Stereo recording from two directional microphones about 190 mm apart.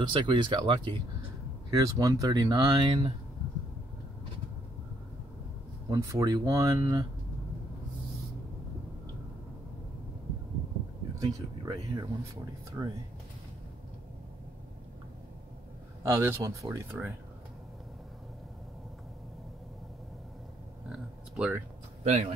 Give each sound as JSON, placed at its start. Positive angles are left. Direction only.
{"t": 0.1, "sound": "speech", "side_deg": -25}
{"t": 5.9, "sound": "speech", "side_deg": -15}
{"t": 11.1, "sound": "speech", "side_deg": -20}
{"t": 16.0, "sound": "speech", "side_deg": -15}
{"t": 20.9, "sound": "a sound", "side_deg": -5}
{"t": 22.0, "sound": "speech", "side_deg": -35}